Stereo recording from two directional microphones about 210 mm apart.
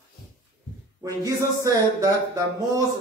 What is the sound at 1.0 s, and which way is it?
Speech, 15° right (ahead or behind).